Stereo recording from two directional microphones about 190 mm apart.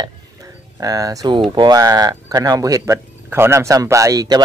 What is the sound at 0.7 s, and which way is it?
Speech, 20° right (ahead or behind).